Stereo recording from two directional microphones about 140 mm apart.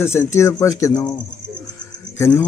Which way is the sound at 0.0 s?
20° left (ahead or behind).